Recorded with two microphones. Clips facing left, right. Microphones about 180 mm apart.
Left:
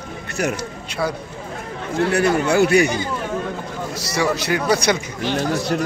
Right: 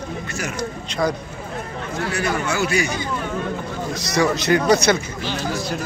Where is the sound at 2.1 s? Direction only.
60° left (ahead or behind).